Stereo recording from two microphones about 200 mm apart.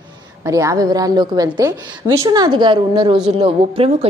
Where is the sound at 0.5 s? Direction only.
15° right (ahead or behind).